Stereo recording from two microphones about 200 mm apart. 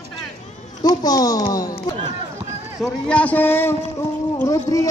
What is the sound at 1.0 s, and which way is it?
Speech, 20° left (ahead or behind).